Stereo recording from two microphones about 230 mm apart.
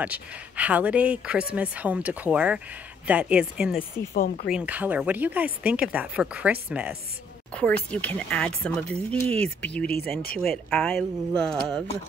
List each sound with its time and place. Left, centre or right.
0.0 s speech: centre
4.1 s speech: left
4.5 s speech: centre
7.5 s speech: centre